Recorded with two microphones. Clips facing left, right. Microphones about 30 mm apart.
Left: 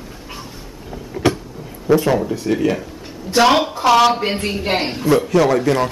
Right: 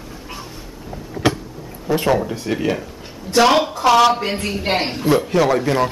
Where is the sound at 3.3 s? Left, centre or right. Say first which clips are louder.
Even; centre.